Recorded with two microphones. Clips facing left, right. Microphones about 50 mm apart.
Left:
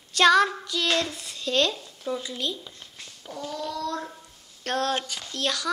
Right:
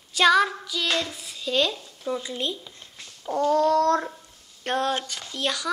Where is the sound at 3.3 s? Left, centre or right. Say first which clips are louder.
Right 13 dB; right.